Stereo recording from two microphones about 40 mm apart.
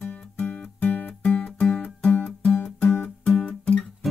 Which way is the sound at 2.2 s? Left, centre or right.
Centre.